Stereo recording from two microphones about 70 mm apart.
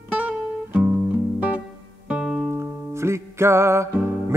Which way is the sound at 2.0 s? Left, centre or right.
Centre.